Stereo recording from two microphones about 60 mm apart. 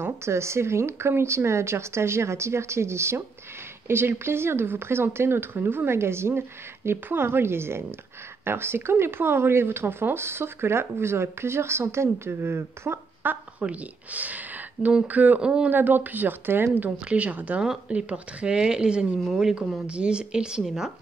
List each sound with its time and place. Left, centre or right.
0.0 s speech: right
15.4 s speech: centre
15.7 s speech: right
16.8 s speech: right; by 20.9 s centre